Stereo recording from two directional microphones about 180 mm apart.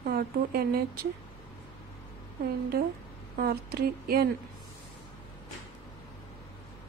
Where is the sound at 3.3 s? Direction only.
55° right (ahead or behind).